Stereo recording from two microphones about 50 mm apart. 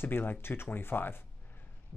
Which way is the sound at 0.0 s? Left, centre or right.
Left.